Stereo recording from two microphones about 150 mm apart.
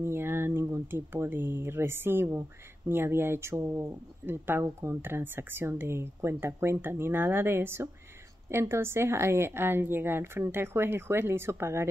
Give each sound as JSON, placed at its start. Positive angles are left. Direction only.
{"t": 0.0, "sound": "a woman's voice", "side_deg": -15}